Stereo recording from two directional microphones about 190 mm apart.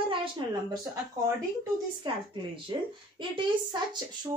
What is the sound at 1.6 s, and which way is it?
Speech, 25° right (ahead or behind).